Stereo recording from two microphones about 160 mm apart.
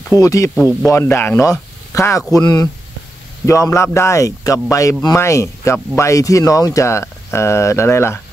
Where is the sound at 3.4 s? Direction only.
20° left (ahead or behind).